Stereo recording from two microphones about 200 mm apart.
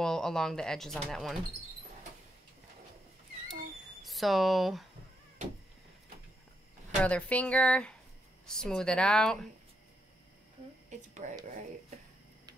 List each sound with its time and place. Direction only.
0.0 s a woman's voice: centre (ahead or behind)
4.0 s speech: centre (ahead or behind)
7.0 s a woman's voice: 5° left (ahead or behind)
10.9 s speech: 35° right (ahead or behind)